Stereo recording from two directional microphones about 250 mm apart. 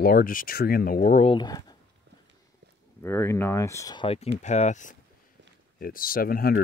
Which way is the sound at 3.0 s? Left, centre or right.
Centre.